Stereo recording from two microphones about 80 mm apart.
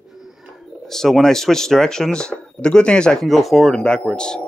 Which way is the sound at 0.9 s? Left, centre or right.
Centre.